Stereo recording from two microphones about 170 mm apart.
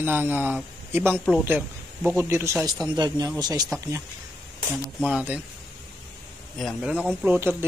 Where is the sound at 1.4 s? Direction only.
10° right (ahead or behind).